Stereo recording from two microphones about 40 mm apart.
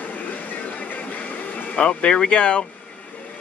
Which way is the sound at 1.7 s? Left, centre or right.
Left.